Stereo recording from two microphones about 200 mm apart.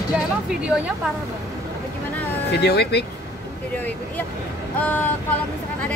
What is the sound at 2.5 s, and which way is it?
Speech, 55° left (ahead or behind).